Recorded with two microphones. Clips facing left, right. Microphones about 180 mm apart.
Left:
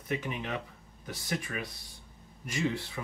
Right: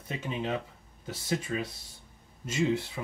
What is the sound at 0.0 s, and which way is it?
Speech, 25° right (ahead or behind).